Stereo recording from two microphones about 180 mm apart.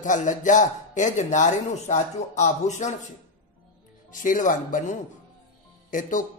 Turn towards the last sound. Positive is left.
turn(degrees=50)  # may be behind; listen again after turning